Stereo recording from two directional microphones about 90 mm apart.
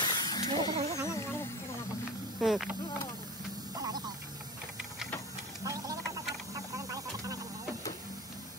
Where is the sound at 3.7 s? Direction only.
45° right (ahead or behind).